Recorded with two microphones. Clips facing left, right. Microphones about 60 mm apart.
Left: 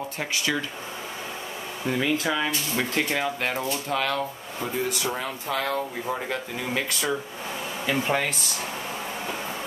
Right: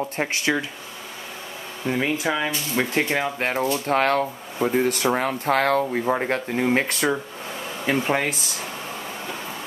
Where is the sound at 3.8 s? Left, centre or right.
Right.